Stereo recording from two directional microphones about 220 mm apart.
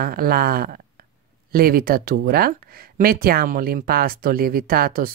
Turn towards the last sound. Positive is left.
turn(degrees=-40)  # may be behind; listen again after turning